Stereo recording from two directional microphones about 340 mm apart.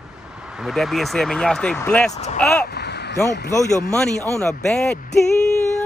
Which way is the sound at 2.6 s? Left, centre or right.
Left.